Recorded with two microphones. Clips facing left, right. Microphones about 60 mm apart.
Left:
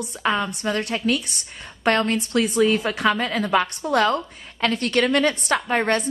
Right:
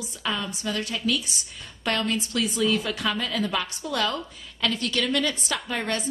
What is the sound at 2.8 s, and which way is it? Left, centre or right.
Speech, left.